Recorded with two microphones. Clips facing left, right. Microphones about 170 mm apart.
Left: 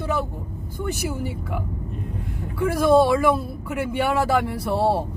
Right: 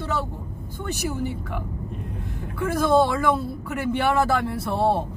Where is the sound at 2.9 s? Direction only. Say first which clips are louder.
Left 3 dB; 10° left (ahead or behind).